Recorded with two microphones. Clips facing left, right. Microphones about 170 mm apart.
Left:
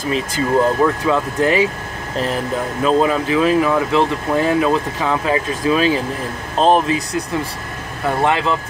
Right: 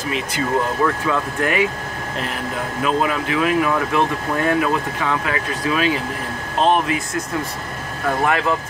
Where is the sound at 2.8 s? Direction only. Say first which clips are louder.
Left 5 dB; 30° left (ahead or behind).